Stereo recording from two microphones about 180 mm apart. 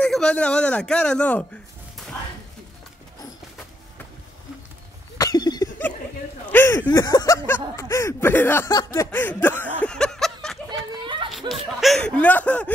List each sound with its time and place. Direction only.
0.0 s a man's voice: 5° left (ahead or behind)
5.1 s a sound: 20° left (ahead or behind)
6.5 s speech: 10° left (ahead or behind)